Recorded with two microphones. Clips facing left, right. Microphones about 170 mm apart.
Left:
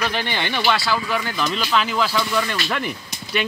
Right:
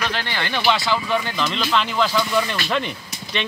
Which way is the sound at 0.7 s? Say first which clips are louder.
Right 2 dB; 20° right (ahead or behind).